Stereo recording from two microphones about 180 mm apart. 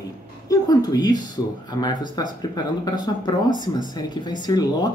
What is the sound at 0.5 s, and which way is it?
A woman's voice, 20° left (ahead or behind).